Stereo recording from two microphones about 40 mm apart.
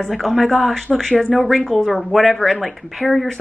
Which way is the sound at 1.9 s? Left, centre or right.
Centre.